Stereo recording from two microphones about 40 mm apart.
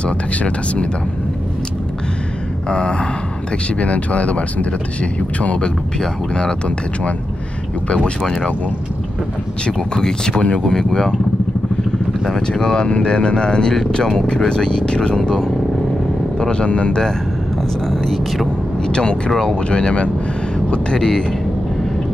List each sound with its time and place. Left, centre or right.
0.0 s speech: left
2.7 s speech: left
5.9 s speech: left
8.0 s speech: centre
9.7 s speech: centre
12.3 s speech: centre; by 17.0 s left
17.8 s a sound: centre
18.9 s speech: left
19.7 s speech: left